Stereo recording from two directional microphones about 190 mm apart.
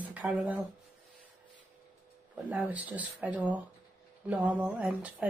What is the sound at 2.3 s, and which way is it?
Speech, 10° right (ahead or behind).